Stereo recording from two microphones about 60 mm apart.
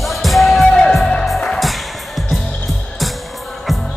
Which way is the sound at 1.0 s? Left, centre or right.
Centre.